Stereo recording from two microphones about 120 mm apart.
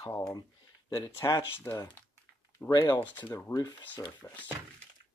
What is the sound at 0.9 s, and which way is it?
Speech, 25° left (ahead or behind).